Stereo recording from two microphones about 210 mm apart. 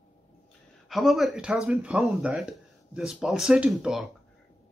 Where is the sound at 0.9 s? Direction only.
Centre (ahead or behind).